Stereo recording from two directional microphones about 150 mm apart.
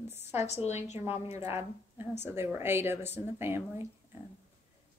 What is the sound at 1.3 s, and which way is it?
Speech, 15° right (ahead or behind).